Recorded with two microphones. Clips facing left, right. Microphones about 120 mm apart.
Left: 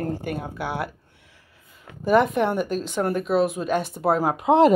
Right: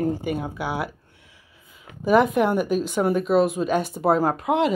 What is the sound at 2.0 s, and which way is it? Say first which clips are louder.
A woman's voice: right 1 dB; centre (ahead or behind).